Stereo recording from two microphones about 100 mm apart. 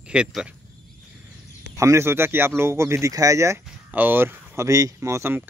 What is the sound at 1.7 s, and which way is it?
A man's voice, 30° right (ahead or behind).